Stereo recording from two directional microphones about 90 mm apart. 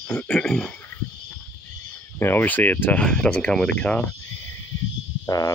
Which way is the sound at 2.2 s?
25° left (ahead or behind).